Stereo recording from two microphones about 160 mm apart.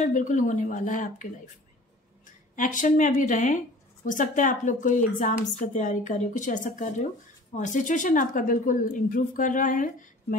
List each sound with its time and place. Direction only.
0.0 s a woman's voice: 50° left (ahead or behind)
2.5 s a woman's voice: 55° left (ahead or behind)